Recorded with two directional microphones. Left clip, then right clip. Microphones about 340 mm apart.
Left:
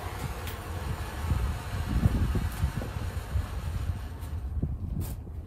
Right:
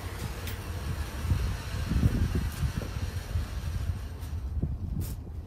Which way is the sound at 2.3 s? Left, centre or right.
Centre.